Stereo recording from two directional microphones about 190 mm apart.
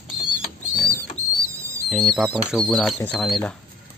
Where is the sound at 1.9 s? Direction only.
Centre (ahead or behind).